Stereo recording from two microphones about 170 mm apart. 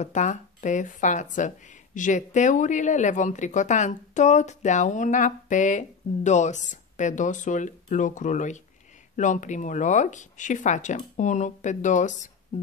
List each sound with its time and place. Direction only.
0.0 s speech: 45° left (ahead or behind)